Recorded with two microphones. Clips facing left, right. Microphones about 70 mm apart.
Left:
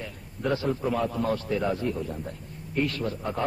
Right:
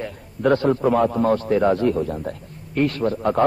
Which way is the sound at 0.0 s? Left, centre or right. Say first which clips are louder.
Right 9 dB; right.